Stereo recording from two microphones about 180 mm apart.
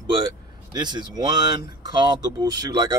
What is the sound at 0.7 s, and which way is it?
Speech, 25° right (ahead or behind).